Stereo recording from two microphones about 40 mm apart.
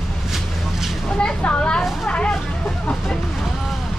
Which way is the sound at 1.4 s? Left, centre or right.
Left.